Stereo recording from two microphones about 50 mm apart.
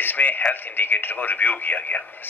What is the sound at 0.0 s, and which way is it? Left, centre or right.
Speech, left.